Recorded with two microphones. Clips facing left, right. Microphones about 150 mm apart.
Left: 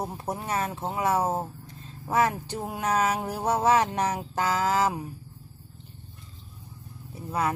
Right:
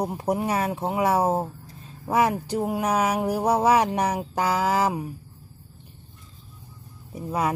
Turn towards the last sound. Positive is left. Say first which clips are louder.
# right 2 dB
turn(degrees=-15)  # may be behind; listen again after turning